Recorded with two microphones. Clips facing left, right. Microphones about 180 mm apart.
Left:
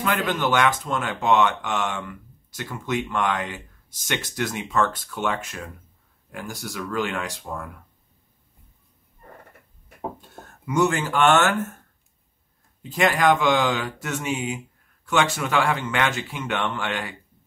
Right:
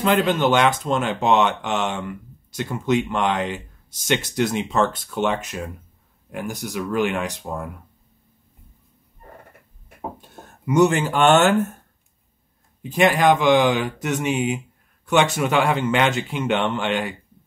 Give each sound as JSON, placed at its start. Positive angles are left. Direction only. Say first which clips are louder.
{"t": 0.3, "sound": "speech", "louder": "right 4 dB", "side_deg": -20}
{"t": 10.6, "sound": "speech", "louder": "right 5 dB", "side_deg": -20}
{"t": 12.8, "sound": "speech", "louder": "right 3 dB", "side_deg": -20}